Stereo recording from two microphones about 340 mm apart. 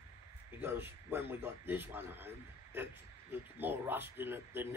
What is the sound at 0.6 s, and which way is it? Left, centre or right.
Speech, centre.